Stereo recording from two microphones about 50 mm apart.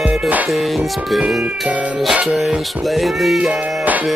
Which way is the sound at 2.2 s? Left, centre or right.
Centre.